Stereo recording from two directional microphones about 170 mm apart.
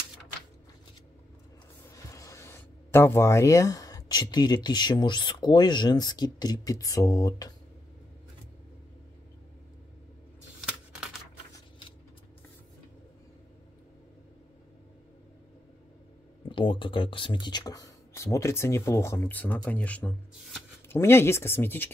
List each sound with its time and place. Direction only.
2.0 s speech: 20° left (ahead or behind)
16.4 s speech: 30° left (ahead or behind); by 21.9 s 10° left (ahead or behind)